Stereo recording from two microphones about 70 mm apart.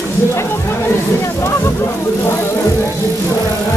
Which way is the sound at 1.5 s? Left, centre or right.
Left.